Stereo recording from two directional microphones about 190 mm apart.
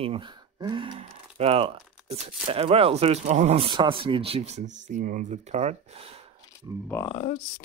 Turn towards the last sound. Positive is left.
turn(degrees=40)  # may be behind; listen again after turning